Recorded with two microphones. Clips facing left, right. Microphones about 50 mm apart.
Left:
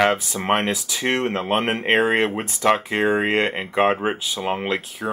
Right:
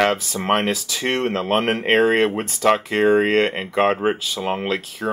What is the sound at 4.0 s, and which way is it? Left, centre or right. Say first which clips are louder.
Speech: right 2 dB; centre.